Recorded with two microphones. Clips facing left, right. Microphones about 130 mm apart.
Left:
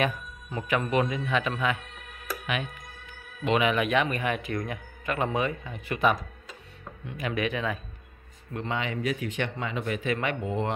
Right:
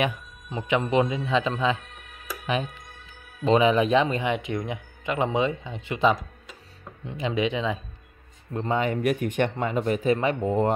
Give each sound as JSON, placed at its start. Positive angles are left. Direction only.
{"t": 0.0, "sound": "speech", "side_deg": -20}
{"t": 8.5, "sound": "speech", "side_deg": -40}